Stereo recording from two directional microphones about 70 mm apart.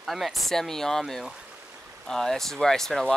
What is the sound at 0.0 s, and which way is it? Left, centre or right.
Speech, centre.